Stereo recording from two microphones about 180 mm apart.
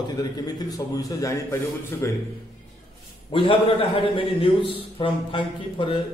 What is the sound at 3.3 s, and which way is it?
A man's voice, 30° left (ahead or behind).